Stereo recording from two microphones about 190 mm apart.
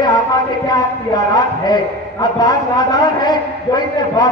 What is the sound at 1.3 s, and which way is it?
A man's voice, 20° left (ahead or behind).